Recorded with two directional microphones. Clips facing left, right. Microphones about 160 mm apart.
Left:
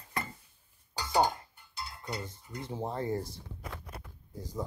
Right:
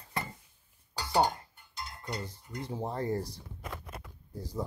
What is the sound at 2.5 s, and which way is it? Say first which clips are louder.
Speech: even; 10° right (ahead or behind).